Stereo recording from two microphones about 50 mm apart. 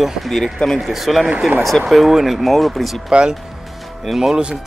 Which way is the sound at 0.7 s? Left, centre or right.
Centre.